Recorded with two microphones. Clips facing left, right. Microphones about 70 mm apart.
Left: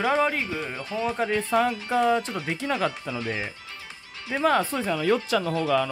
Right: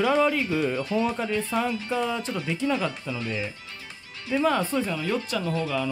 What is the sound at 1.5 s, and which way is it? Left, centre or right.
Speech, left.